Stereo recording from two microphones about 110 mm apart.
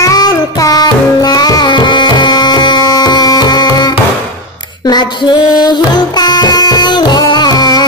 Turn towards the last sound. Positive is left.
turn(degrees=40)  # may be behind; listen again after turning